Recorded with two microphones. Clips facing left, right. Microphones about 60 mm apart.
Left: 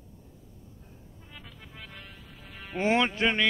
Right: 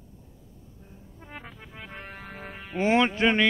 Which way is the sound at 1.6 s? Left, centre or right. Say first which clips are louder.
Right 4 dB; right.